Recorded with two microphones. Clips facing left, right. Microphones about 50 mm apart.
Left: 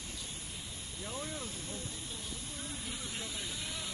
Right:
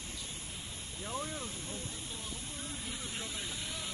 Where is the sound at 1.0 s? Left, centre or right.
Right.